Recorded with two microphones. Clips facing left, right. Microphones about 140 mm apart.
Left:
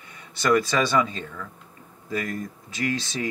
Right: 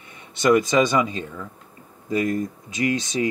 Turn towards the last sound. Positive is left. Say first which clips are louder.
# right 5 dB
turn(degrees=-20)  # may be behind; listen again after turning